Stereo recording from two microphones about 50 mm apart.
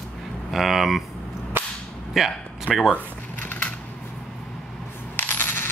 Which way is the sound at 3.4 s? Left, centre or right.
Left.